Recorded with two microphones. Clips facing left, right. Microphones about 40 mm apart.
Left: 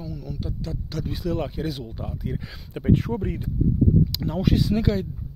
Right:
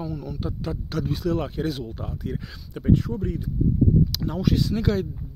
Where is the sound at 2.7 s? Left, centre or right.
Left.